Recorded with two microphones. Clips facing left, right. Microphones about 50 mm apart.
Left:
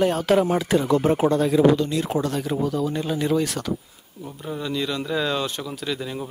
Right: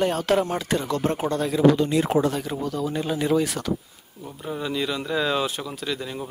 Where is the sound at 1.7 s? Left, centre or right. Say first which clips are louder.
Right 1 dB; right.